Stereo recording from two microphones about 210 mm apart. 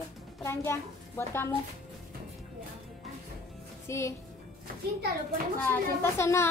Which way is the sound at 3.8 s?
15° left (ahead or behind).